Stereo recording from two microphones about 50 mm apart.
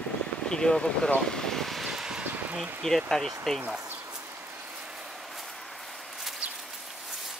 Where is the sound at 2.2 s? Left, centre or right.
Right.